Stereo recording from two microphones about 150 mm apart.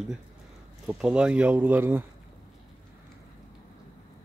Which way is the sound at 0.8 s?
5° right (ahead or behind).